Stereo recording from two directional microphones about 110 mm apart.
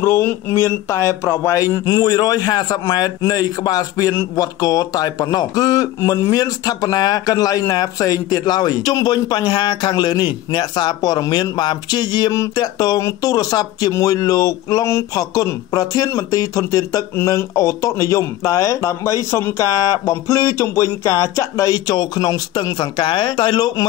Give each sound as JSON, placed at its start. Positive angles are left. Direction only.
{"t": 0.0, "sound": "speech", "side_deg": 20}